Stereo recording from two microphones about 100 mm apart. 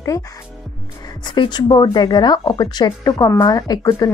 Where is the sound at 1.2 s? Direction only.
45° left (ahead or behind).